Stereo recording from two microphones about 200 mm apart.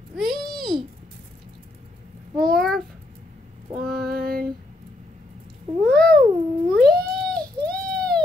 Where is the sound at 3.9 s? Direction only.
50° right (ahead or behind).